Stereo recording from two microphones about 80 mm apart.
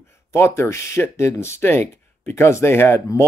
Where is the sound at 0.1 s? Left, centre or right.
Left.